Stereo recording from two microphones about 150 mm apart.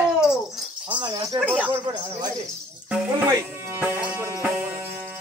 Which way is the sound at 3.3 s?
15° right (ahead or behind).